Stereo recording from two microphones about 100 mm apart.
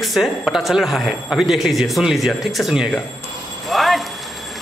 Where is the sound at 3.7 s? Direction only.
Centre (ahead or behind).